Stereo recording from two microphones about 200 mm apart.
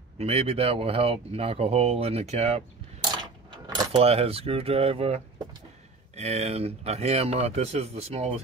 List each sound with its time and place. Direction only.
0.2 s speech: 30° right (ahead or behind)
3.6 s speech: 20° right (ahead or behind)